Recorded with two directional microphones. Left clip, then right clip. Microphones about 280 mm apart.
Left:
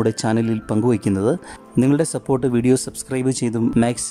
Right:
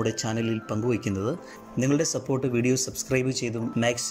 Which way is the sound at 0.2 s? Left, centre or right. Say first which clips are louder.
Left 8 dB; centre.